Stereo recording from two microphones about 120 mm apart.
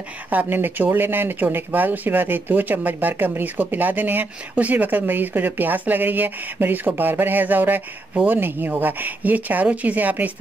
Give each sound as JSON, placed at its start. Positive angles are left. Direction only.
{"t": 0.3, "sound": "speech", "side_deg": -15}